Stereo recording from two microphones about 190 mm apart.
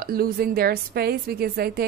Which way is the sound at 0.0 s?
50° right (ahead or behind).